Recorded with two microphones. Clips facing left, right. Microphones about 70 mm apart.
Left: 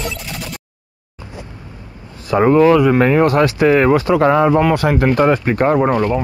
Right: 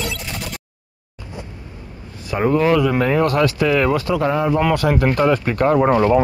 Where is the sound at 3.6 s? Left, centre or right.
Left.